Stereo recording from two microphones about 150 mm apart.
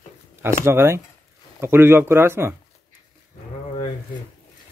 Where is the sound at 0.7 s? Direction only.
15° right (ahead or behind).